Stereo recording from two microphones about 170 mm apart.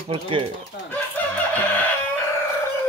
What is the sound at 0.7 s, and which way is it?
Chicken, 80° left.